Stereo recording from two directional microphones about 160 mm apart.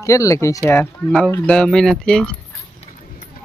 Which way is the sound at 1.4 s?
5° left (ahead or behind).